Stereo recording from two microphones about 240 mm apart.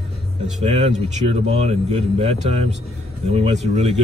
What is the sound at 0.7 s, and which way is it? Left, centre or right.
A man's voice, right.